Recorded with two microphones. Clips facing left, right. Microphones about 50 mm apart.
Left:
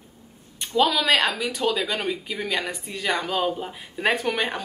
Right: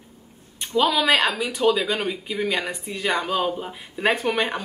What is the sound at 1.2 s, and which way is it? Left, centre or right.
Speech, right.